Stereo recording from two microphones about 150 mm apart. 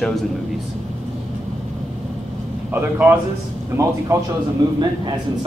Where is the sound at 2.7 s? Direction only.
15° right (ahead or behind).